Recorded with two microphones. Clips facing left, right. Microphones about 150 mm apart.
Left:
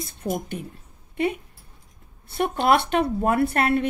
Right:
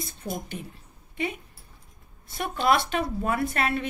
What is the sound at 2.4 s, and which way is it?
Speech, 60° left (ahead or behind).